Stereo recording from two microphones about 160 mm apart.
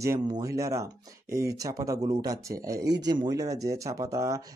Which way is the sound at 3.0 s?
25° right (ahead or behind).